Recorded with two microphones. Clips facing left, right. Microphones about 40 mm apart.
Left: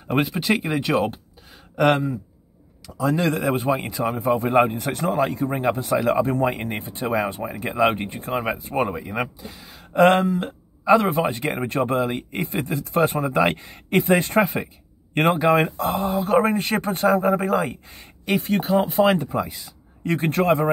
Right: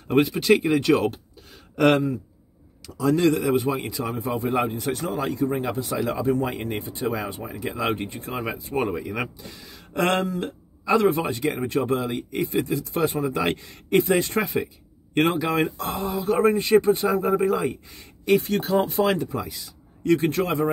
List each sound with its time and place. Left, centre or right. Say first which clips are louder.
0.1 s speech: right 3 dB; centre
2.9 s speech: right 1 dB; centre
3.2 s a man's voice: right 4 dB; left
8.8 s a man's voice: left 1 dB; centre; by 16.2 s left
16.2 s speech: even; left
18.5 s speech: left 2 dB; centre
18.9 s a man's voice: left 4 dB; left